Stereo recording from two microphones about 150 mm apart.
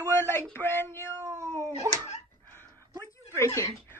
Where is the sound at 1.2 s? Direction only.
20° right (ahead or behind).